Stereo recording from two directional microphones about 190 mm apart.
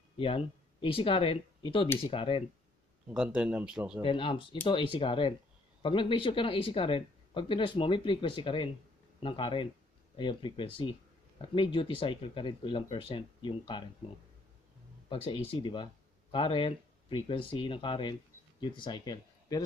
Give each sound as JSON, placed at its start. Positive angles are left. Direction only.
{"t": 0.2, "sound": "speech", "side_deg": 30}
{"t": 3.3, "sound": "speech", "side_deg": -5}
{"t": 4.0, "sound": "speech", "side_deg": 25}
{"t": 15.0, "sound": "speech", "side_deg": 30}